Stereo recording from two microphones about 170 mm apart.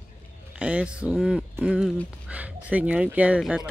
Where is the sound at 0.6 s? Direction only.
5° right (ahead or behind).